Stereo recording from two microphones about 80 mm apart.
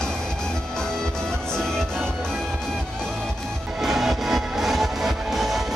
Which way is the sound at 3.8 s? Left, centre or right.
Centre.